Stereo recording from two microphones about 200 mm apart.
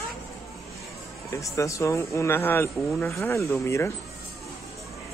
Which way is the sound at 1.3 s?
15° left (ahead or behind).